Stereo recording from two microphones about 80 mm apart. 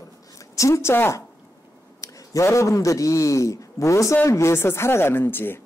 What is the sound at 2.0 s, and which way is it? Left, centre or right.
A man's voice, left.